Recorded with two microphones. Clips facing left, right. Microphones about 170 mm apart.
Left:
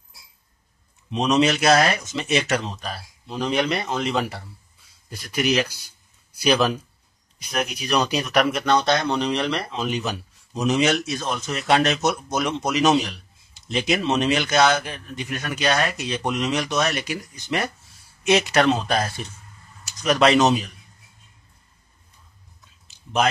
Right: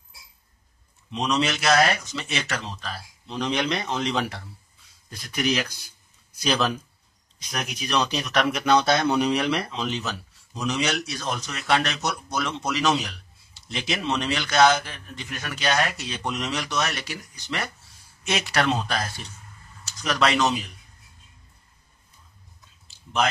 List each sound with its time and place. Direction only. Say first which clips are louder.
1.2 s a man's voice: left 5 dB; 20° left (ahead or behind)
3.3 s speech: left 3 dB; 5° left (ahead or behind)
7.7 s speech: left 1 dB; 10° left (ahead or behind)
9.8 s a man's voice: left 4 dB; 15° left (ahead or behind)